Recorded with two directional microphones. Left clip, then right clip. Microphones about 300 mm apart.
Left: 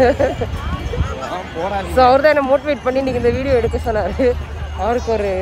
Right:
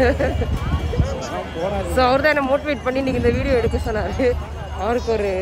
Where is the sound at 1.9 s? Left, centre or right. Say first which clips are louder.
Left 6 dB; centre.